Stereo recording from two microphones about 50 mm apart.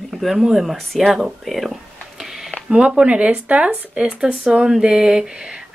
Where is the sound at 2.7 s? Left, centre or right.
Right.